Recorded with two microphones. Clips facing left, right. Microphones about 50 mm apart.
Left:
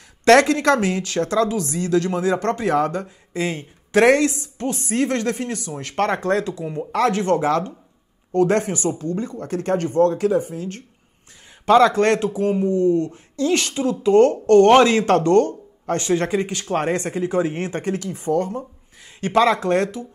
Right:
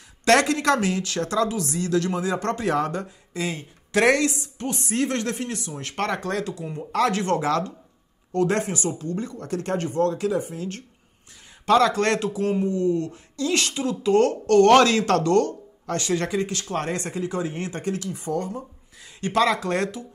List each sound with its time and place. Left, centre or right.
0.2 s speech: left
6.6 s speech: centre
6.9 s speech: left
19.1 s speech: left